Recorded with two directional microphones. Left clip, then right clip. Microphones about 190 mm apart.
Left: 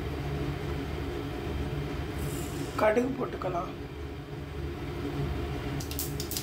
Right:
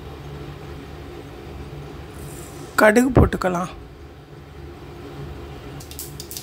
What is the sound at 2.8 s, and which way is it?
Speech, 55° right (ahead or behind).